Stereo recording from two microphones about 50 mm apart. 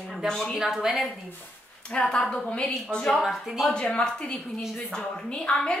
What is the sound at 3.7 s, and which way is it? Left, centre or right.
A woman's voice, centre.